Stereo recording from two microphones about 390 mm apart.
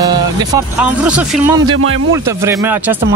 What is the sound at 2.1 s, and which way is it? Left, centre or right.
Speech, centre.